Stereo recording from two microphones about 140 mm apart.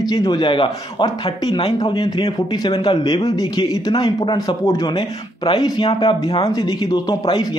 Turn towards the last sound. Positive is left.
turn(degrees=30)  # may be behind; listen again after turning